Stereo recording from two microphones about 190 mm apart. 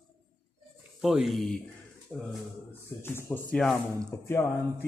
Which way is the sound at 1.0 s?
Centre (ahead or behind).